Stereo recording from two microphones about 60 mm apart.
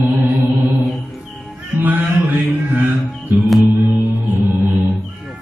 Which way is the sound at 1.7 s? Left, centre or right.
Right.